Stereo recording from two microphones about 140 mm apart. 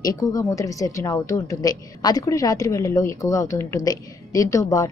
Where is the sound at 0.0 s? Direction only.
25° left (ahead or behind).